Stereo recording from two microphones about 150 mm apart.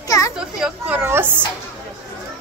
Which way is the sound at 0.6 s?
5° right (ahead or behind).